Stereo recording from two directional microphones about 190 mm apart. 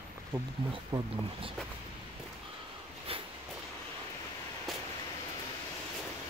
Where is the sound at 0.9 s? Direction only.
15° right (ahead or behind).